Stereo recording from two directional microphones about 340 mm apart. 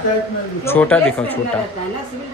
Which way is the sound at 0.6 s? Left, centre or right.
Centre.